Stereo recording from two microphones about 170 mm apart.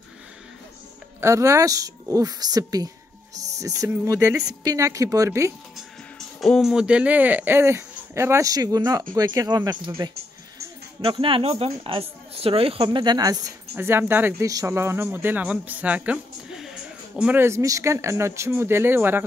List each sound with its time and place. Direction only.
1.2 s speech: 20° right (ahead or behind)
6.1 s speech: centre (ahead or behind)